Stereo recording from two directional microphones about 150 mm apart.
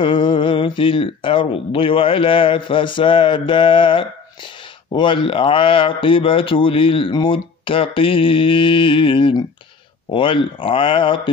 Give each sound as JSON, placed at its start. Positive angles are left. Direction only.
{"t": 0.0, "sound": "speech", "side_deg": 35}